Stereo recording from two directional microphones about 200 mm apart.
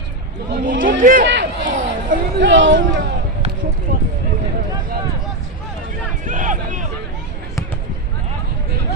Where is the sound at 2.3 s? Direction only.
65° right (ahead or behind).